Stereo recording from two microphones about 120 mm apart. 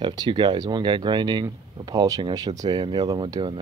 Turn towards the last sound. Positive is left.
turn(degrees=-40)  # may be behind; listen again after turning